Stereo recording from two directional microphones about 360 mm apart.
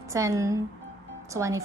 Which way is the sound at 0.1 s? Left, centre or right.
Centre.